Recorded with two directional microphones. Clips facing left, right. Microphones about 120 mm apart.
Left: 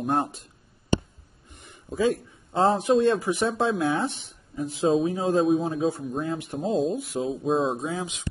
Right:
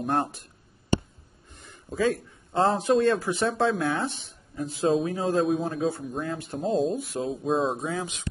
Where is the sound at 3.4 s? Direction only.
5° left (ahead or behind).